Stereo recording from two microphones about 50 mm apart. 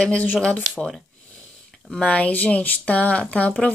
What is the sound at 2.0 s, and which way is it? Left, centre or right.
Speech, left.